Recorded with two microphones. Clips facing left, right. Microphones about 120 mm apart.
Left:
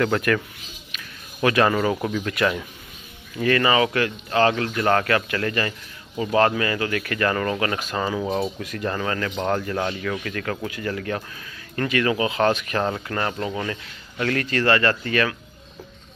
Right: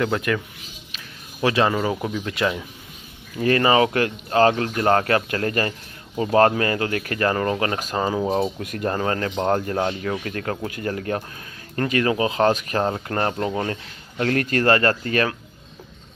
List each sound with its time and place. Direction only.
0.0 s speech: 15° right (ahead or behind)
0.9 s speech: 25° right (ahead or behind)
3.4 s speech: 35° right (ahead or behind)
8.2 s speech: 20° right (ahead or behind)
8.7 s speech: 35° right (ahead or behind)